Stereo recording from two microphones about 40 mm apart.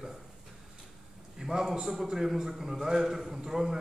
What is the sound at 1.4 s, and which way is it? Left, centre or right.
A man's voice, centre.